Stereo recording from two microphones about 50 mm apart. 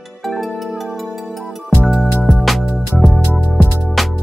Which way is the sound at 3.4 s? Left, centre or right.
Right.